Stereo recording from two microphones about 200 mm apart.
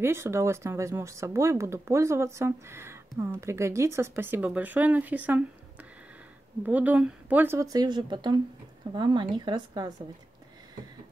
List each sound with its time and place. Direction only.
0.0 s speech: 15° right (ahead or behind)